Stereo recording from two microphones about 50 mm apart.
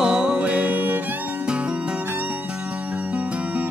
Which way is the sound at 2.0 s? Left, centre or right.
Right.